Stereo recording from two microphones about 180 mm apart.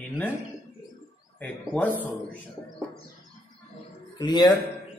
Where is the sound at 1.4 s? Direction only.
10° left (ahead or behind).